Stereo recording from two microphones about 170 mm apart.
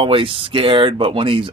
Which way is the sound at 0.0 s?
30° right (ahead or behind).